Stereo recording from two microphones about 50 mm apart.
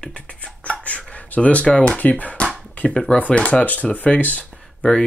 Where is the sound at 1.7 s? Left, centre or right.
Left.